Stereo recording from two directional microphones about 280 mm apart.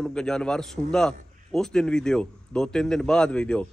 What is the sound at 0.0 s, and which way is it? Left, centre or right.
A man's voice, centre.